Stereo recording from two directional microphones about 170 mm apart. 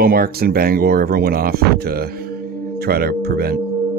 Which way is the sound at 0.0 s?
60° right (ahead or behind).